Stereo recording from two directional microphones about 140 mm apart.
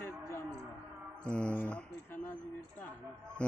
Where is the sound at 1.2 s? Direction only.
5° left (ahead or behind).